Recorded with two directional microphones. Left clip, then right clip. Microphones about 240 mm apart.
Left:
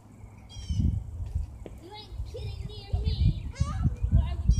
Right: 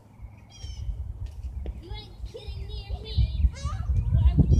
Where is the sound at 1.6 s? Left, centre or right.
Centre.